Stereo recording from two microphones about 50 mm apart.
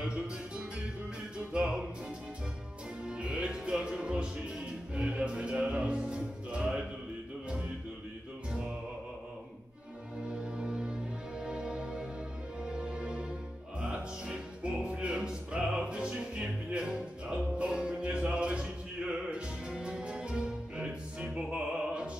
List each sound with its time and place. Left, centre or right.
0.0 s music: centre
3.1 s music: centre
10.2 s music: centre